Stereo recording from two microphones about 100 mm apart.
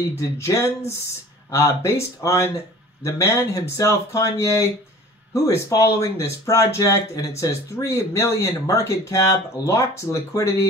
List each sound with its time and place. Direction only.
0.2 s speech: 30° left (ahead or behind)